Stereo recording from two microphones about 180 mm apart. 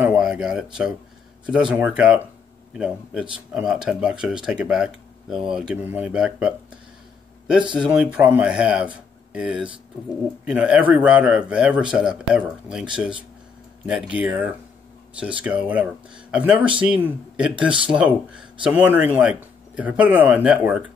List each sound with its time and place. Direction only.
0.0 s a sound: 5° right (ahead or behind)
1.4 s speech: 5° right (ahead or behind)
3.5 s speech: 5° right (ahead or behind)
7.7 s speech: 5° right (ahead or behind)
13.8 s speech: 5° right (ahead or behind)